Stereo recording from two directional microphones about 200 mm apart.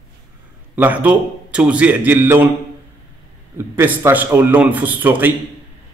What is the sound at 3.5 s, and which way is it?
A man's voice, 10° right (ahead or behind).